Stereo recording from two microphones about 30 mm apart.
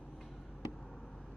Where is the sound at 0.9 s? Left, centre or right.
Left.